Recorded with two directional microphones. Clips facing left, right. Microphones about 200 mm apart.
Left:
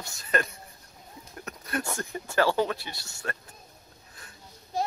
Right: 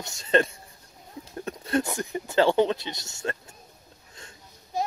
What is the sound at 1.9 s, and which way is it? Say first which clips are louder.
Speech: right 4 dB; 15° right (ahead or behind).